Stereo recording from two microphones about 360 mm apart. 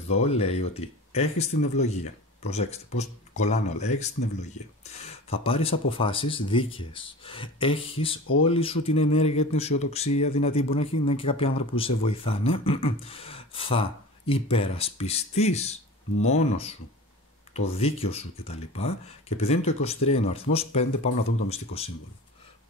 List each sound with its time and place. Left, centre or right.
0.1 s speech: centre